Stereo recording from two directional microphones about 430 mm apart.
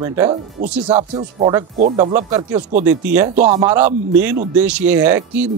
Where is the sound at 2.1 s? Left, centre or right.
Centre.